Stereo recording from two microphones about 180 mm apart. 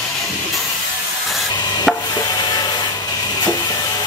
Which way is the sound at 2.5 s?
25° left (ahead or behind).